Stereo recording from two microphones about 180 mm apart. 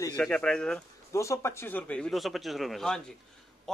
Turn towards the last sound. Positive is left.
turn(degrees=0)  # may be behind; listen again after turning